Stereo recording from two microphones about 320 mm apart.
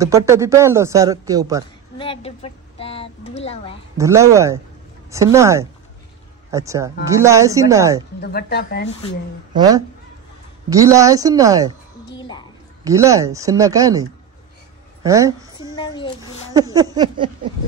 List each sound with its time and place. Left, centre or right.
0.0 s speech: centre
2.0 s a woman's voice: centre
4.0 s speech: centre
8.2 s speech: left
9.5 s speech: centre
12.2 s a child's voice: centre
12.8 s speech: centre
15.0 s speech: centre
15.7 s speech: centre
16.5 s speech: centre